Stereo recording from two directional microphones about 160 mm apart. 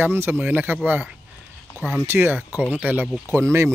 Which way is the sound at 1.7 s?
15° left (ahead or behind).